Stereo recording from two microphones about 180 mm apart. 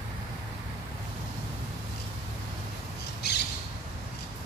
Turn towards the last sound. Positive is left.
turn(degrees=65)  # may be behind; listen again after turning